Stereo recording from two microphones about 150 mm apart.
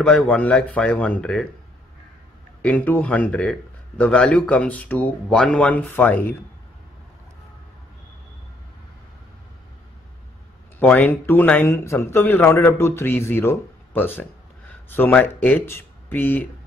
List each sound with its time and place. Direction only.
0.0 s speech: 5° left (ahead or behind)
2.6 s speech: 10° left (ahead or behind)
10.8 s speech: 10° left (ahead or behind)